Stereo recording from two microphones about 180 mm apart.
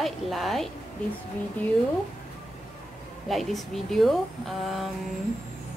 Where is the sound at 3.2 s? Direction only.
Centre (ahead or behind).